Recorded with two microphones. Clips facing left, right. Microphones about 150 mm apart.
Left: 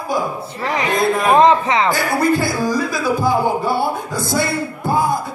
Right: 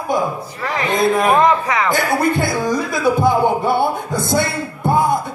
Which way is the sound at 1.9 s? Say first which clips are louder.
Even; 20° right (ahead or behind).